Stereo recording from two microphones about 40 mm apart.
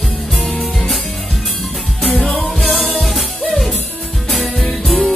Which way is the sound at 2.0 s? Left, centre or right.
Centre.